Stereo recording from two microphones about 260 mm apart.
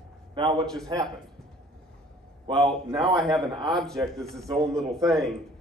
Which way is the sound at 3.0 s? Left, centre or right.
Centre.